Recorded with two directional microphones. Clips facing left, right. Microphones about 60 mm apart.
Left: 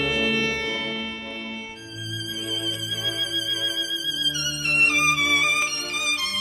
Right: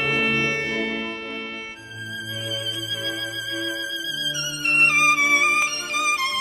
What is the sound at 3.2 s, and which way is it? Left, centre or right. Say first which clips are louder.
Music: right 1 dB; right.